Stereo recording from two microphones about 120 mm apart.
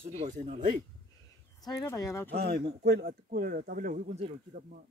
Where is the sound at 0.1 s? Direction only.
75° right (ahead or behind).